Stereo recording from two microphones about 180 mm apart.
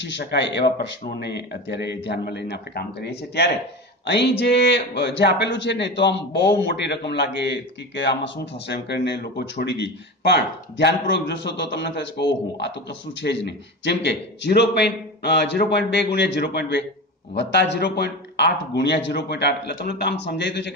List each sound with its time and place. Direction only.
0.0 s a man's voice: 75° left (ahead or behind)